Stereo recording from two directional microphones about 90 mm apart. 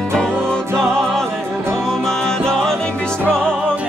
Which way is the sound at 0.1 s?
5° left (ahead or behind).